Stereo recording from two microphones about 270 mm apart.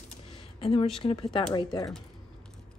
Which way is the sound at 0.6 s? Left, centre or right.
Centre.